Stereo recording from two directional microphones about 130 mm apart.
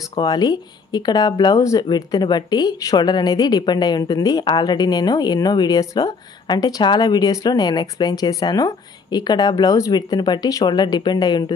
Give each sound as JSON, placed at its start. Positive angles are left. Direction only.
{"t": 0.1, "sound": "speech", "side_deg": 35}